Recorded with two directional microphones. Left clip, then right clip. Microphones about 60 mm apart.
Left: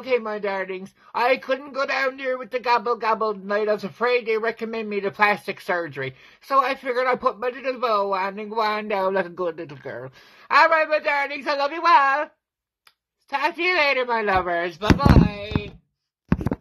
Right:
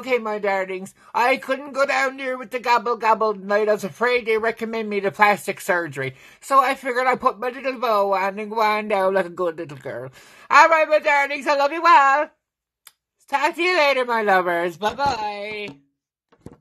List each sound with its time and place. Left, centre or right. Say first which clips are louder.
0.0 s speech: right 2 dB; right
6.9 s speech: right 2 dB; right
8.8 s speech: right 3 dB; right
10.5 s speech: right 3 dB; right
13.3 s speech: right 2 dB; right